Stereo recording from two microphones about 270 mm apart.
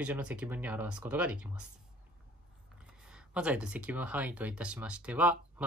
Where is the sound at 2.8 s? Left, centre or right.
Centre.